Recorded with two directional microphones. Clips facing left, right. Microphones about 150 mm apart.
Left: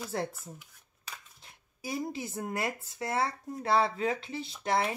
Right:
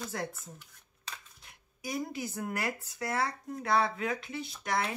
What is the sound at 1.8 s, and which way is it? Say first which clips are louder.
Speech: left 1 dB; 30° left (ahead or behind).